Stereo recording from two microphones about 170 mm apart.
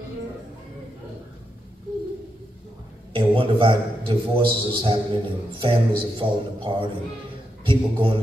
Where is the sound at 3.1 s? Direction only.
30° right (ahead or behind).